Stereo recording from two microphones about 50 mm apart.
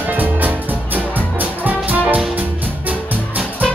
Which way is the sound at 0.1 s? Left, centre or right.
Right.